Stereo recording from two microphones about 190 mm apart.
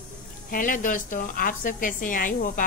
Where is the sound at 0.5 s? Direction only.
45° left (ahead or behind).